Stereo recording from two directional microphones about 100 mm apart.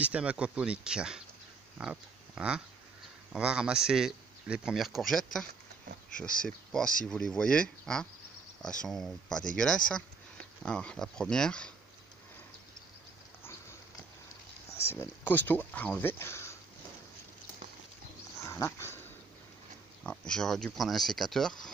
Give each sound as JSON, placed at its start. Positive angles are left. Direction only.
{"t": 0.0, "sound": "speech", "side_deg": -15}
{"t": 14.8, "sound": "speech", "side_deg": 25}
{"t": 18.4, "sound": "dog", "side_deg": 30}
{"t": 20.1, "sound": "speech", "side_deg": 5}